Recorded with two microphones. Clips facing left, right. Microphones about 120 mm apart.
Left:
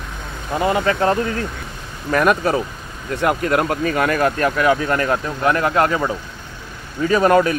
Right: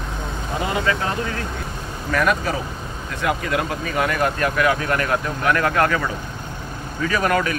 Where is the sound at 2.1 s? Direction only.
45° left (ahead or behind).